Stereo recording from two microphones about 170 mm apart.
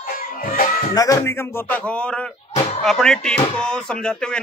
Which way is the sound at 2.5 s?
40° left (ahead or behind).